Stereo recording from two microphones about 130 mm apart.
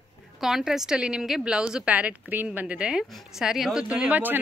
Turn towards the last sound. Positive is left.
turn(degrees=-15)  # may be behind; listen again after turning